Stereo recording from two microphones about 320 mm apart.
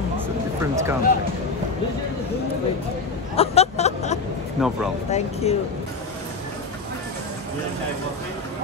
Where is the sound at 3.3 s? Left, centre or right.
Centre.